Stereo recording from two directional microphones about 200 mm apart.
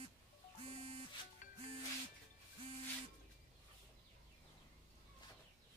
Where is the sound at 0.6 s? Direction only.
30° right (ahead or behind).